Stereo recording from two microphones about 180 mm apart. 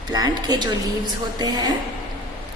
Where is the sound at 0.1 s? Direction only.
20° right (ahead or behind).